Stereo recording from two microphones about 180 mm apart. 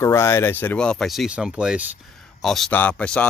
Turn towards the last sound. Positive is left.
turn(degrees=5)  # may be behind; listen again after turning